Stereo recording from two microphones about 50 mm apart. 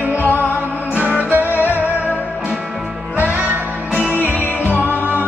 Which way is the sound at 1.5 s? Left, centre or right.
Left.